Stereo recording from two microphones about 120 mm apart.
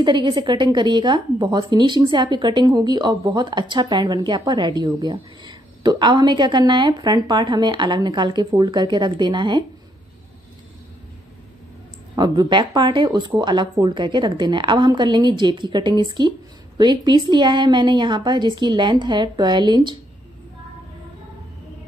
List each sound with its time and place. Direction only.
0.0 s a woman's voice: 40° right (ahead or behind)
12.2 s a woman's voice: 40° right (ahead or behind)